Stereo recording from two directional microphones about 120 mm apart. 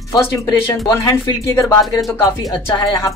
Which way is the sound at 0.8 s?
25° left (ahead or behind).